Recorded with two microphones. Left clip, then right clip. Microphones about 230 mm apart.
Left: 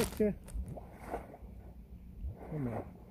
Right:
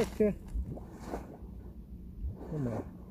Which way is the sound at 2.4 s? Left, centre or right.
Right.